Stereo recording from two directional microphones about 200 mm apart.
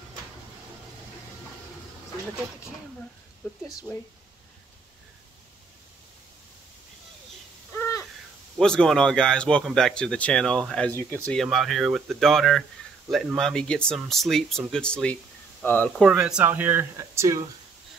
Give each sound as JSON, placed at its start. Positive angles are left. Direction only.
{"t": 7.7, "sound": "a sound", "side_deg": 15}
{"t": 8.5, "sound": "speech", "side_deg": 5}
{"t": 11.4, "sound": "speech", "side_deg": 0}
{"t": 16.0, "sound": "speech", "side_deg": -5}